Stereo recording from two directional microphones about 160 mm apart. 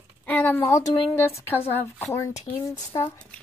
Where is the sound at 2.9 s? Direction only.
30° left (ahead or behind).